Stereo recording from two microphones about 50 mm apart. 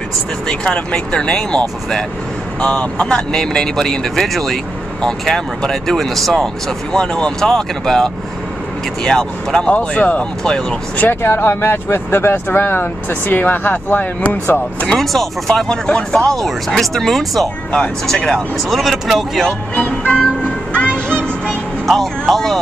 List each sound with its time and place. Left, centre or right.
0.7 s speech: left
2.6 s speech: left
9.7 s speech: left
10.4 s speech: centre
11.0 s speech: left
14.9 s speech: centre
16.3 s speech: centre
19.7 s speech: left
20.9 s music: centre
21.8 s speech: centre